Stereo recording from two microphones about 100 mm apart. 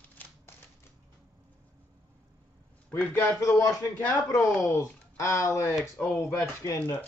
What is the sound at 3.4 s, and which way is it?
Speech, 35° left (ahead or behind).